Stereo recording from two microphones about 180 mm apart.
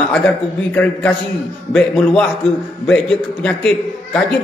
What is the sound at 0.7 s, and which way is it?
Speech, 5° left (ahead or behind).